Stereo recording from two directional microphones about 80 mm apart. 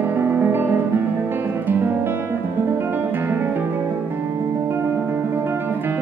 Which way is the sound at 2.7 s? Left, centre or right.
Right.